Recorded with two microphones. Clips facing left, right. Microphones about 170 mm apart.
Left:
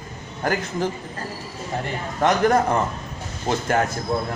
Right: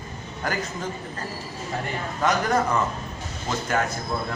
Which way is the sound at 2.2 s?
55° left (ahead or behind).